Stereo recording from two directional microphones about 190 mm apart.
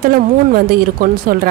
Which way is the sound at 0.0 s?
50° right (ahead or behind).